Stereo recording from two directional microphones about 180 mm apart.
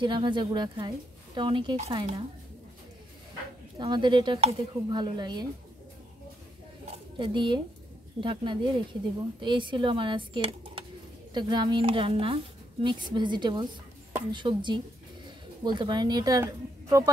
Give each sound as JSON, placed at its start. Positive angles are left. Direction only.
{"t": 0.0, "sound": "speech", "side_deg": -25}
{"t": 3.7, "sound": "speech", "side_deg": -25}
{"t": 6.9, "sound": "pigeon", "side_deg": -25}
{"t": 8.2, "sound": "speech", "side_deg": -25}